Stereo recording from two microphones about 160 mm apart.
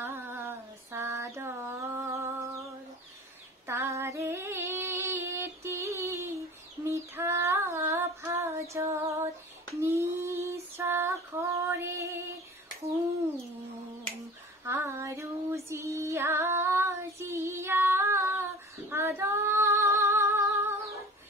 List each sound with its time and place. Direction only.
0.0 s a sound: 15° right (ahead or behind)
3.6 s female singing: 15° right (ahead or behind)
14.6 s female singing: 15° right (ahead or behind)